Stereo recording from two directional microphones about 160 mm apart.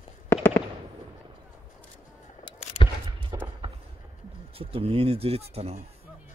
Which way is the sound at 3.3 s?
20° right (ahead or behind).